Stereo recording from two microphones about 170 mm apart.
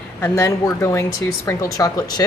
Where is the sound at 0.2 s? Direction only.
15° left (ahead or behind).